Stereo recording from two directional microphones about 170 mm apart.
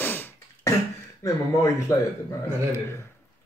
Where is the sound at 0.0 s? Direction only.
10° left (ahead or behind).